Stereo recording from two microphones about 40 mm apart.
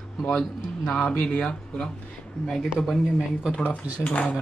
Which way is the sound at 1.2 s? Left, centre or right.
Left.